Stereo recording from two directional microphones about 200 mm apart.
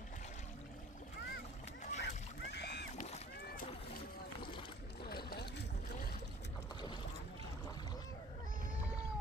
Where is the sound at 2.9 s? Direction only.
35° left (ahead or behind).